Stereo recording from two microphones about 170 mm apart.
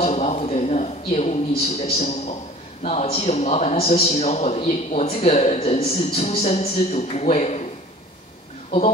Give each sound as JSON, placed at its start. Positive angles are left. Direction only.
{"t": 0.0, "sound": "a man's voice", "side_deg": 40}